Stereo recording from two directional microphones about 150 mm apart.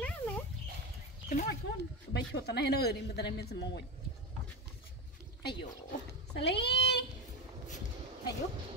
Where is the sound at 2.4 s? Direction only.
90° left.